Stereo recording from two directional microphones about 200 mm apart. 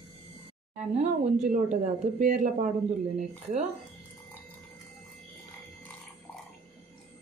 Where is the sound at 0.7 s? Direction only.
35° right (ahead or behind).